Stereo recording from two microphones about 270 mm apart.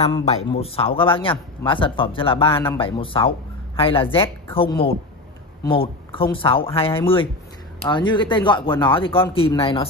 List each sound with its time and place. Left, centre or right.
0.1 s speech: left